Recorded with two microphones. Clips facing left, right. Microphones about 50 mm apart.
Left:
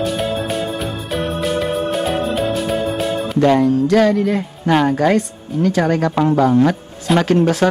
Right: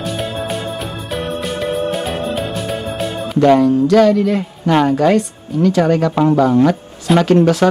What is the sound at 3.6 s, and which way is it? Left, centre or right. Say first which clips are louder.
Speech: right 2 dB; left.